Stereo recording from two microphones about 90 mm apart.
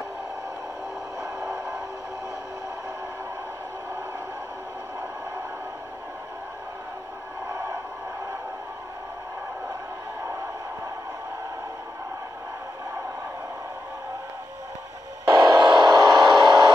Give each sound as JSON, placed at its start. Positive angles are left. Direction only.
{"t": 1.2, "sound": "a sound", "side_deg": -40}
{"t": 15.2, "sound": "music", "side_deg": -35}
{"t": 15.6, "sound": "vehicle", "side_deg": -50}